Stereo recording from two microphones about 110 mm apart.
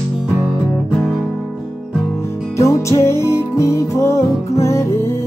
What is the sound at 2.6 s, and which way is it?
Music, 25° left (ahead or behind).